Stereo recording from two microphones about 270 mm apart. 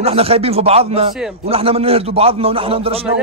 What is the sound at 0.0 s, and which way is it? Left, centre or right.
Speech, right.